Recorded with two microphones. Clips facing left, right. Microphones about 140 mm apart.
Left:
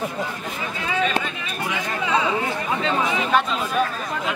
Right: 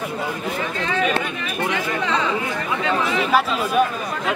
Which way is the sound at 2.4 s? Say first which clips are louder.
Even; 30° left (ahead or behind).